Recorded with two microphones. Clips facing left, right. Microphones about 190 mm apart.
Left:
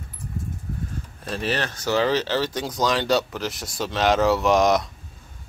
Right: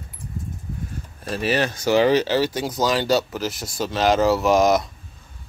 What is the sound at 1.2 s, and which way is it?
Speech, 10° right (ahead or behind).